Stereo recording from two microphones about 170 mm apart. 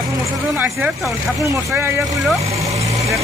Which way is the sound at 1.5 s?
15° right (ahead or behind).